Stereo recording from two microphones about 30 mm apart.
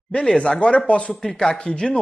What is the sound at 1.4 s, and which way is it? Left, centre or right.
Speech, left.